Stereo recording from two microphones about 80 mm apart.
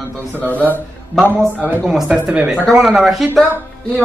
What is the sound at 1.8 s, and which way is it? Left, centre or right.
Speech, centre.